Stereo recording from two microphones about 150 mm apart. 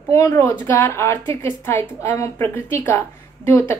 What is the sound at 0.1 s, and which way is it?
A woman's voice, 20° left (ahead or behind).